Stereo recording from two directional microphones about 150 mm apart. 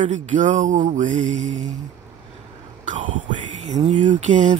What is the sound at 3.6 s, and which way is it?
Speech, 50° right (ahead or behind).